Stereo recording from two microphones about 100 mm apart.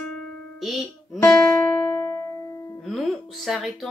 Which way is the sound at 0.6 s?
Centre (ahead or behind).